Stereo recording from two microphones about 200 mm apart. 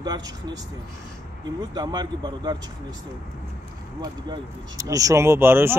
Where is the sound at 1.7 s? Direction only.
20° right (ahead or behind).